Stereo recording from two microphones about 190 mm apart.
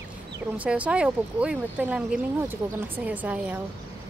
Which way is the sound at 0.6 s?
5° right (ahead or behind).